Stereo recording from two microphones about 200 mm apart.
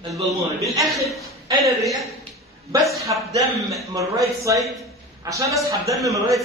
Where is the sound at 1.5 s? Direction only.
15° right (ahead or behind).